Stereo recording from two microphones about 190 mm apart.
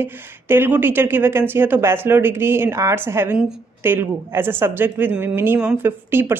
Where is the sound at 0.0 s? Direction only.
10° right (ahead or behind).